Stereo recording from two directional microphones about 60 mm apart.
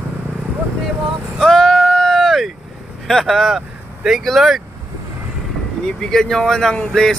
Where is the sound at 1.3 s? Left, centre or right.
Centre.